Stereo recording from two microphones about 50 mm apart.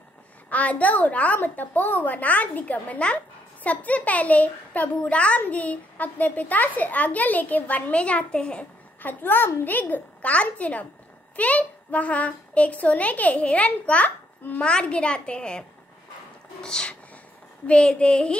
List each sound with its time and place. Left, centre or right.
0.5 s a child's voice: left
9.0 s a child's voice: left
16.6 s a child's voice: centre